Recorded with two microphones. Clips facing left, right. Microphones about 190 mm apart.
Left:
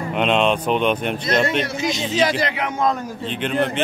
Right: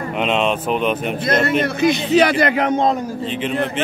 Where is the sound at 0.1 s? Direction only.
Centre (ahead or behind).